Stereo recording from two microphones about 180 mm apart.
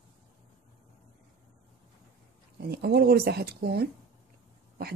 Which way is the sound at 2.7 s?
60° right (ahead or behind).